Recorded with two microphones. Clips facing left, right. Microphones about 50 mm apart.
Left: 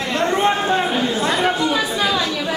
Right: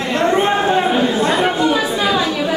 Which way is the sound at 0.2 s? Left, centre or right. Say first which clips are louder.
Right 3 dB; centre.